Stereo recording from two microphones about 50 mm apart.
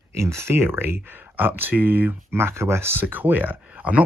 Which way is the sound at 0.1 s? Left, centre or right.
Right.